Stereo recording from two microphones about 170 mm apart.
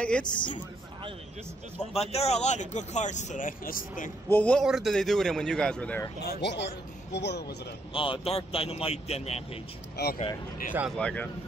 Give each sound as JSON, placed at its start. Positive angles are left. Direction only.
{"t": 0.0, "sound": "a man's voice", "side_deg": 5}
{"t": 1.8, "sound": "a man's voice", "side_deg": 35}
{"t": 4.3, "sound": "a man's voice", "side_deg": 10}
{"t": 6.2, "sound": "speech", "side_deg": 90}
{"t": 7.9, "sound": "speech", "side_deg": 30}
{"t": 10.0, "sound": "speech", "side_deg": 75}
{"t": 11.0, "sound": "a man's voice", "side_deg": 5}